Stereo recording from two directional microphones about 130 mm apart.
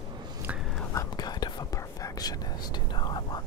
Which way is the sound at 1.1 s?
35° left (ahead or behind).